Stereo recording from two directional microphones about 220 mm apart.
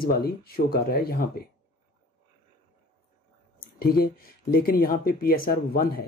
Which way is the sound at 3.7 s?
40° left (ahead or behind).